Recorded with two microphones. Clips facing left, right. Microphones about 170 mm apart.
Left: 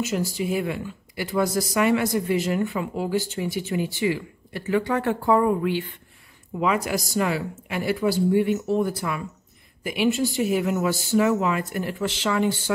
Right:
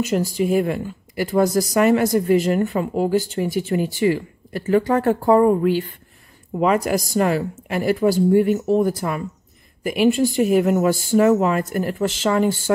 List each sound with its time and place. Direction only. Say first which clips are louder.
0.0 s speech: right 5 dB; 50° right (ahead or behind)